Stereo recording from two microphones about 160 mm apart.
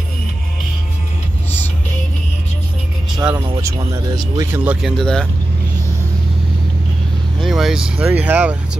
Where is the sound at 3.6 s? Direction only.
20° right (ahead or behind).